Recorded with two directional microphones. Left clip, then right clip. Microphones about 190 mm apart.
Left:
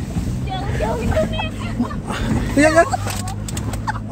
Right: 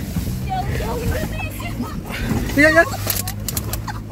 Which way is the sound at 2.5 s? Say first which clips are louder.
Even; 5° left (ahead or behind).